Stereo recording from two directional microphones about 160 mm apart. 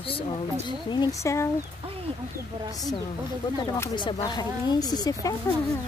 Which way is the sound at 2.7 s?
25° left (ahead or behind).